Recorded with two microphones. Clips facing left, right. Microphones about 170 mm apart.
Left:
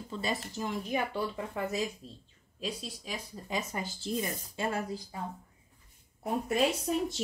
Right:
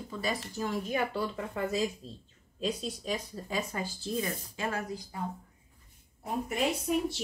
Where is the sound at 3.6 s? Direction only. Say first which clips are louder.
Right 2 dB; 20° left (ahead or behind).